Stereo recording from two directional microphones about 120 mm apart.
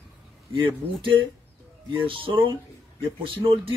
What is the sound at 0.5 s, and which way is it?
A man's voice, 45° right (ahead or behind).